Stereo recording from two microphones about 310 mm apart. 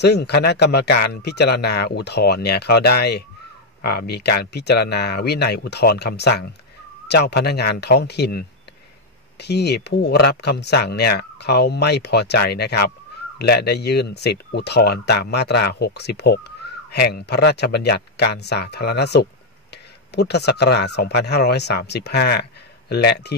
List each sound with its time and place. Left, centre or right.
0.0 s speech: left